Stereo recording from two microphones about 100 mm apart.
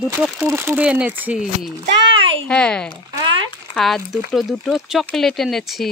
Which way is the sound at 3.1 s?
55° right (ahead or behind).